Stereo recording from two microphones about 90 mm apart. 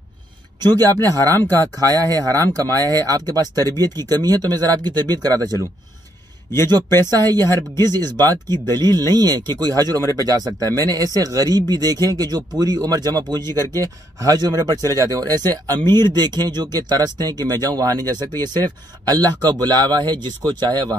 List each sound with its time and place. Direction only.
0.6 s speech: 45° right (ahead or behind)
7.3 s speech: 30° left (ahead or behind)
7.9 s speech: 50° right (ahead or behind)